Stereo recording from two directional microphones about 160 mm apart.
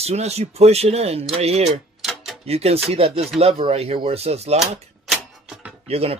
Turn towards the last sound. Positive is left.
turn(degrees=-40)  # may be behind; listen again after turning